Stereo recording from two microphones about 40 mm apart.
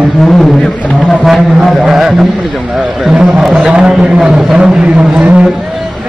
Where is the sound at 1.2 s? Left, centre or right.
Centre.